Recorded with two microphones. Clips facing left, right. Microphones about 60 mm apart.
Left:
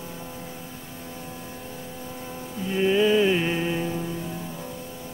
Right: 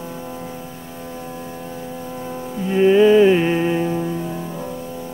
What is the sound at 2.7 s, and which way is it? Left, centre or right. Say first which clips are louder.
Music: right 8 dB; centre.